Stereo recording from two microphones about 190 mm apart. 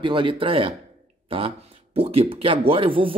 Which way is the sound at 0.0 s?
25° right (ahead or behind).